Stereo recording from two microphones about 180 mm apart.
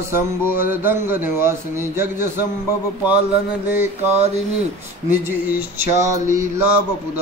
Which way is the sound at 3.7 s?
10° right (ahead or behind).